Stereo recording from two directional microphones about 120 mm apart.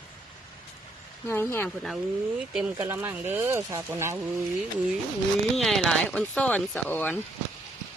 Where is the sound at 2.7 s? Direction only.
20° right (ahead or behind).